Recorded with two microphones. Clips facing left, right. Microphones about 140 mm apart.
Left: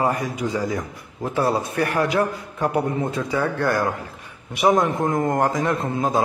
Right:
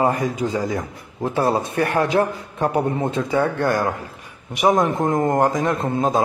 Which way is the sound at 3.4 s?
40° right (ahead or behind).